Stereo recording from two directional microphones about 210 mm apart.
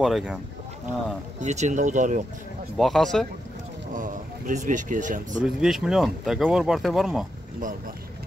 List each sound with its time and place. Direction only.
0.0 s speech: 5° right (ahead or behind)
1.4 s speech: 35° right (ahead or behind)
2.8 s speech: centre (ahead or behind)
3.9 s speech: 40° right (ahead or behind)
5.4 s speech: 5° right (ahead or behind)